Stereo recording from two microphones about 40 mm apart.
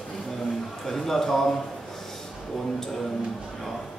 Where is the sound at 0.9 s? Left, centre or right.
Centre.